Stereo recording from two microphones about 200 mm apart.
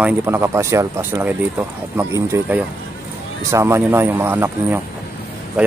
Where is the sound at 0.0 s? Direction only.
10° right (ahead or behind).